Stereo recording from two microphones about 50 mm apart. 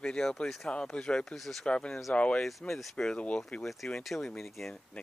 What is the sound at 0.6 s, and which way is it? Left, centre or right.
Speech, left.